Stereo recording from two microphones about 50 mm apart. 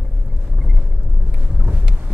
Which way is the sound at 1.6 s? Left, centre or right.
Right.